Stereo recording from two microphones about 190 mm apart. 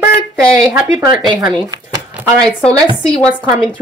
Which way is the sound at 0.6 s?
20° right (ahead or behind).